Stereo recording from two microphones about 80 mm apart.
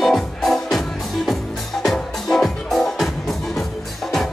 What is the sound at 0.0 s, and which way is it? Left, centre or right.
Music, centre.